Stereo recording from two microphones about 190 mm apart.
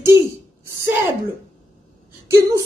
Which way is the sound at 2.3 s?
15° right (ahead or behind).